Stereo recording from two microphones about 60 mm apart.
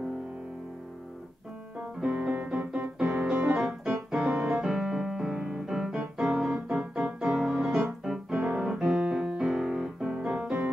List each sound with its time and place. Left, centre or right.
1.8 s music: centre
3.5 s piano: centre
4.1 s music: centre